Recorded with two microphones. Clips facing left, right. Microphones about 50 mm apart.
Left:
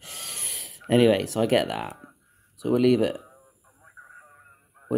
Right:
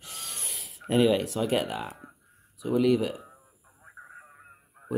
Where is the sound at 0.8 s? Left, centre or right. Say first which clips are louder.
Left 4 dB; left.